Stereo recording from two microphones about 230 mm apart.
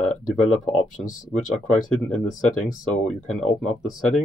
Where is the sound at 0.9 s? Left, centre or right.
Left.